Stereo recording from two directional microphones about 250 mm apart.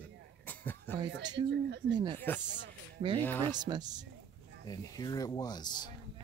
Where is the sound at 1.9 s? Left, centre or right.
Centre.